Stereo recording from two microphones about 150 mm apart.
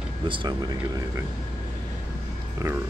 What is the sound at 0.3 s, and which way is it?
Speech, 35° right (ahead or behind).